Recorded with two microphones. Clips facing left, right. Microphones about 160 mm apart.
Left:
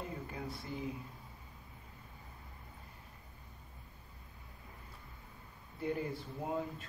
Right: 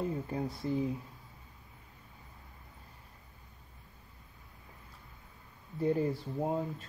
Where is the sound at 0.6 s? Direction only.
35° right (ahead or behind).